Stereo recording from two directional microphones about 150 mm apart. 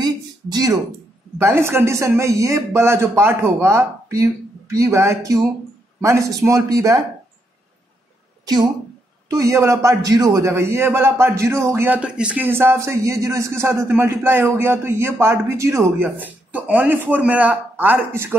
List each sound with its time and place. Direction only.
0.0 s a sound: 25° right (ahead or behind)
1.4 s a man's voice: 15° right (ahead or behind)
9.3 s a man's voice: 20° right (ahead or behind)